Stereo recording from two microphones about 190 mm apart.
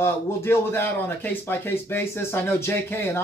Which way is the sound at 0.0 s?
15° left (ahead or behind).